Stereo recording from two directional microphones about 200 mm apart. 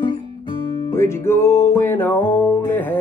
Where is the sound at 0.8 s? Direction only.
15° left (ahead or behind).